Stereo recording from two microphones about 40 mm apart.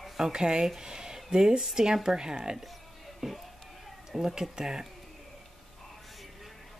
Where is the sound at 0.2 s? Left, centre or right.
Centre.